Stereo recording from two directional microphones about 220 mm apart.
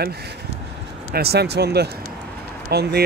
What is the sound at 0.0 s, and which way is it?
Speech, 45° right (ahead or behind).